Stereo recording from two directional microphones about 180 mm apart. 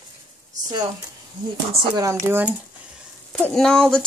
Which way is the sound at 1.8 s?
20° right (ahead or behind).